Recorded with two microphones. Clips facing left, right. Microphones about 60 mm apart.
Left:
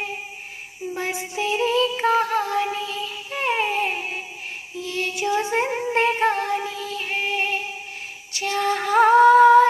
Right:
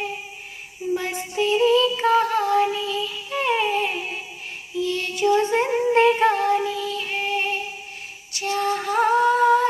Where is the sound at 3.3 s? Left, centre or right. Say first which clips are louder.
Right 1 dB; left.